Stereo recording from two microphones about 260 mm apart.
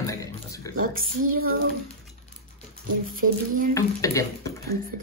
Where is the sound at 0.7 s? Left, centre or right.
Right.